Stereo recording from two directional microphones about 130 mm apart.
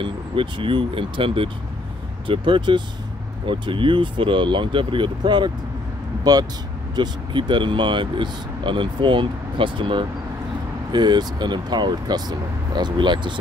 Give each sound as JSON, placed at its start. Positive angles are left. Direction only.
{"t": 0.0, "sound": "speech", "side_deg": -40}